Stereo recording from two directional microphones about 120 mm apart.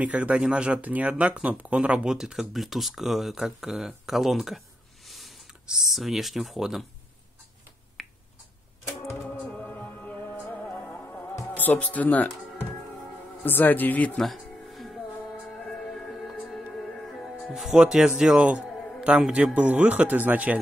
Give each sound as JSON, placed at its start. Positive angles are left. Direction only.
{"t": 0.0, "sound": "speech", "side_deg": -10}
{"t": 8.0, "sound": "finger snapping", "side_deg": 0}
{"t": 9.0, "sound": "music", "side_deg": 20}
{"t": 13.5, "sound": "a man's voice", "side_deg": 15}
{"t": 14.4, "sound": "music", "side_deg": 0}
{"t": 18.7, "sound": "music", "side_deg": 5}
{"t": 18.9, "sound": "a man's voice", "side_deg": -5}